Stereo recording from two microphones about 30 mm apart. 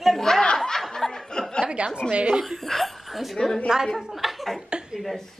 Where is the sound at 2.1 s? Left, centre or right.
Right.